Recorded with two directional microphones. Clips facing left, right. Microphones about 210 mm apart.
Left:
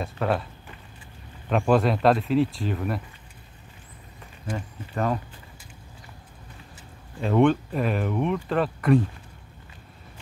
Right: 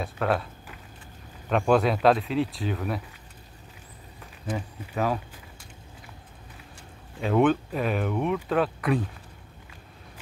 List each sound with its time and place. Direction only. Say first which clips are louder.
0.0 s speech: even; centre (ahead or behind)
4.5 s speech: right 1 dB; 5° right (ahead or behind)
7.2 s speech: left 2 dB; 5° right (ahead or behind)